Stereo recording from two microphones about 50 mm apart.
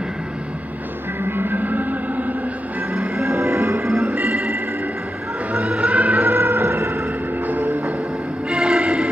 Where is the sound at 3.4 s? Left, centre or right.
Right.